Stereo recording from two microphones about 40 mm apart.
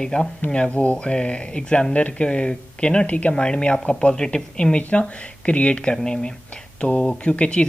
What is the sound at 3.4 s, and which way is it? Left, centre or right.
Speech, left.